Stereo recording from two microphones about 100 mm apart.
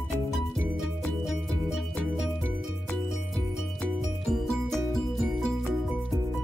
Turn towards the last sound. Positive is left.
turn(degrees=5)  # may be behind; listen again after turning